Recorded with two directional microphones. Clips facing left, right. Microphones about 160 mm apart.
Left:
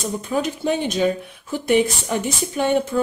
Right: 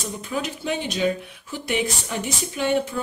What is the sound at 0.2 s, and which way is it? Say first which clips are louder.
Speech: left 5 dB; 45° left (ahead or behind).